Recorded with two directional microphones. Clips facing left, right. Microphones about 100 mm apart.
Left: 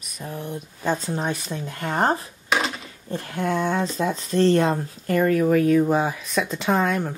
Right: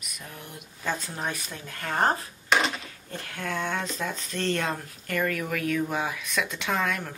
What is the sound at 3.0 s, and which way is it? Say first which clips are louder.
Speech: left 9 dB; 30° left (ahead or behind).